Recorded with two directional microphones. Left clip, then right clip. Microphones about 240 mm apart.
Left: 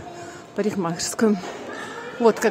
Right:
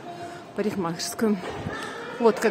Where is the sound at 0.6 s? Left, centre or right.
Centre.